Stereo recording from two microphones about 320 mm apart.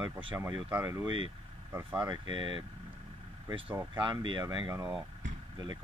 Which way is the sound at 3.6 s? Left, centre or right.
Centre.